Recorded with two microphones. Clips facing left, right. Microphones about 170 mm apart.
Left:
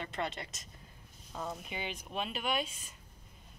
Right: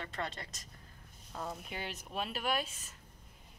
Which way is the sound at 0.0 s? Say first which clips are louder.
Left 3 dB; 20° left (ahead or behind).